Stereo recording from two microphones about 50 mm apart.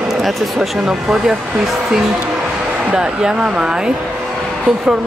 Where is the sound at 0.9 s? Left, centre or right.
Centre.